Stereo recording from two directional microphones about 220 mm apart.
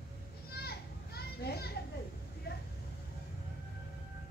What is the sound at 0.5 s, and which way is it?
Children playing, 45° left (ahead or behind).